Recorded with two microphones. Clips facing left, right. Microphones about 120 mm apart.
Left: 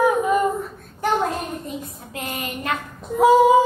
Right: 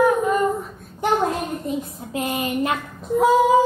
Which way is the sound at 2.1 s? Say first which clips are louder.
Right 6 dB; 25° right (ahead or behind).